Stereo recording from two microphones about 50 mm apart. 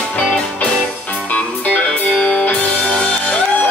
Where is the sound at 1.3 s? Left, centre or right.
Left.